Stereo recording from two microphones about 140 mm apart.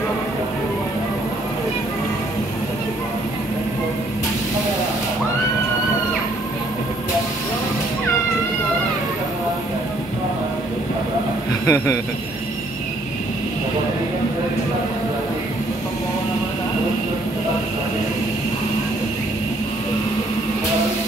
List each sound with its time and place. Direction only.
11.6 s a man's voice: 20° left (ahead or behind)